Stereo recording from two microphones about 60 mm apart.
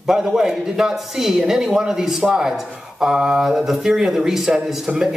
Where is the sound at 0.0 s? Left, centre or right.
Centre.